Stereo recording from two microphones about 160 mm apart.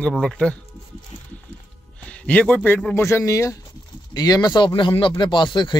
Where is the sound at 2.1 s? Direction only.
10° left (ahead or behind).